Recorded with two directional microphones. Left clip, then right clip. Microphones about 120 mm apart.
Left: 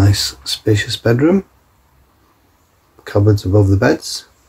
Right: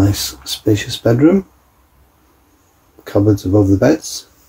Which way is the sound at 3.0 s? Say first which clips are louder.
Right 2 dB; 5° left (ahead or behind).